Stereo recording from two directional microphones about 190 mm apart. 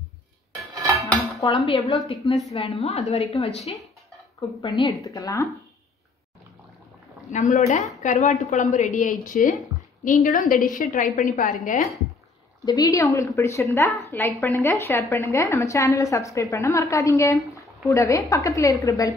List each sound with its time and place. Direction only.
0.9 s dishes: 5° left (ahead or behind)
1.4 s a woman's voice: 30° left (ahead or behind)
7.3 s a woman's voice: 40° left (ahead or behind)
12.6 s a woman's voice: 20° left (ahead or behind)